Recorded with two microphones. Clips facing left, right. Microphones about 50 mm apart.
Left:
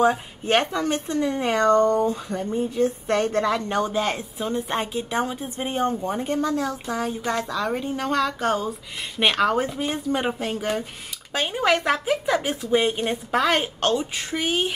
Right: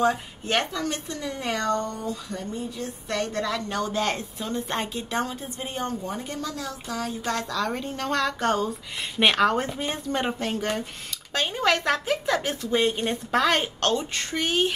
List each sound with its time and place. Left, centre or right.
0.0 s speech: left
3.9 s speech: centre